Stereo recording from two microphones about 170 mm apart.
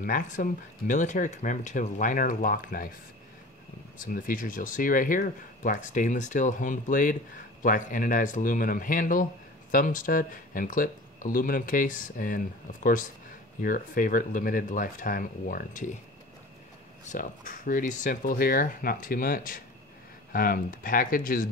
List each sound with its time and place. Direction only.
0.0 s speech: 50° left (ahead or behind)
4.0 s speech: 55° left (ahead or behind)
17.0 s speech: 50° left (ahead or behind)